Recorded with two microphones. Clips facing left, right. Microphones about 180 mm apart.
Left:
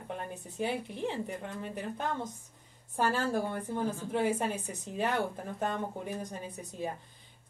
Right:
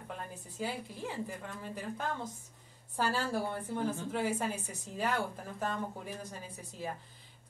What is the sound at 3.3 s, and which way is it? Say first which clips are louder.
Speech: left 2 dB; 20° left (ahead or behind).